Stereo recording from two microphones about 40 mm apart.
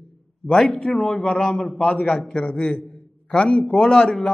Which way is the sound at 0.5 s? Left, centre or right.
Centre.